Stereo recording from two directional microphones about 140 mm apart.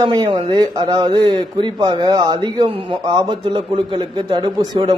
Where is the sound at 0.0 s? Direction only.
30° right (ahead or behind).